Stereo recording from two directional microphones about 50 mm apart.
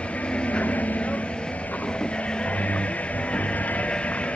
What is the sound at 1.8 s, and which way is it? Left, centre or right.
Music, centre.